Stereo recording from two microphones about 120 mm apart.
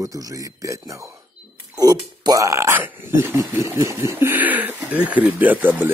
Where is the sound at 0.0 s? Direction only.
30° right (ahead or behind).